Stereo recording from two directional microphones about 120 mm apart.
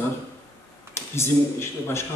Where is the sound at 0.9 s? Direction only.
20° left (ahead or behind).